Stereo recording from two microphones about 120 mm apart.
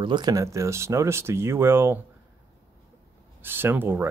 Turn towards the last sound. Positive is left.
turn(degrees=-20)  # may be behind; listen again after turning